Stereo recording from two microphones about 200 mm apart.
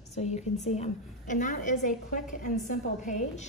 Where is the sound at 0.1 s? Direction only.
35° left (ahead or behind).